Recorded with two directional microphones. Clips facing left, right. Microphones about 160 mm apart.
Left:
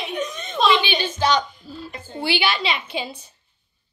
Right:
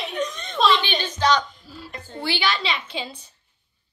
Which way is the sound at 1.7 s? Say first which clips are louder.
Left 3 dB; 20° left (ahead or behind).